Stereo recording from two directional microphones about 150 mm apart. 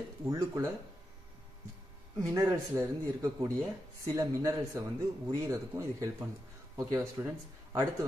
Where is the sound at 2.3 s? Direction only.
20° right (ahead or behind).